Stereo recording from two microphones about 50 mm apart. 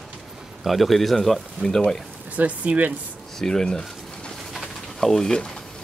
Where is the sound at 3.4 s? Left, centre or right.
Centre.